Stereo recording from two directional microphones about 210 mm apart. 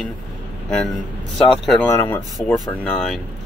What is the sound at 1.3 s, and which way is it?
Speech, centre (ahead or behind).